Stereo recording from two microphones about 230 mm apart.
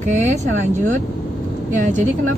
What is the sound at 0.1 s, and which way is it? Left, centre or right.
Speech, right.